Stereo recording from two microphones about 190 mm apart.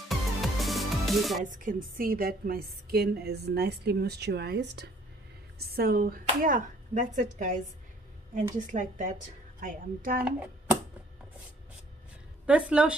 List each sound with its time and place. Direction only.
0.1 s music: centre (ahead or behind)
1.4 s a woman's voice: 45° right (ahead or behind)
8.7 s a woman's voice: 40° right (ahead or behind)
12.4 s a woman's voice: 5° right (ahead or behind)